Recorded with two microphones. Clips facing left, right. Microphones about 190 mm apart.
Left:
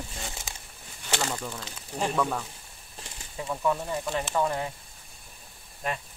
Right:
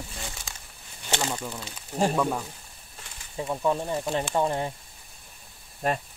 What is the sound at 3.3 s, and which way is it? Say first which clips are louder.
Speech: right 2 dB; 25° right (ahead or behind).